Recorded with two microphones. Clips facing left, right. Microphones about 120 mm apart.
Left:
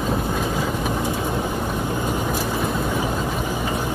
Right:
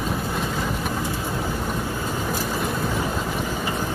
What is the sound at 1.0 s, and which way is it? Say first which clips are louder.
Vehicle: left 3 dB; 20° left (ahead or behind).